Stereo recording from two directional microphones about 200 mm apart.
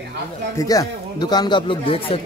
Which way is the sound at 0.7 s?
20° left (ahead or behind).